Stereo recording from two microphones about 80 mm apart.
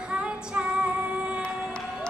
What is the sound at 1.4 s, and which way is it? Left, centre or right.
Crowd, centre.